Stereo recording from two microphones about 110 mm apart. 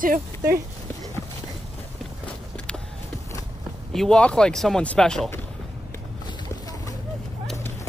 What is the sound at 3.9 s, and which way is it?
Speech, 5° left (ahead or behind).